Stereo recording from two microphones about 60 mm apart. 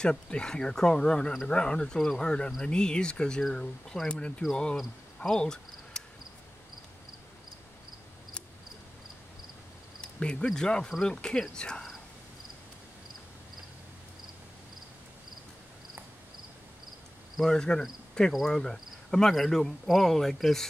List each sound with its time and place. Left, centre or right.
0.0 s speech: centre
5.4 s cricket: centre
10.0 s speech: centre
17.4 s speech: centre